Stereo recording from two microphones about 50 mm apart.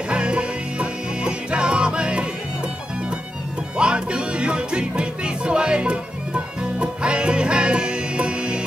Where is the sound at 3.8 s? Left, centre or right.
Centre.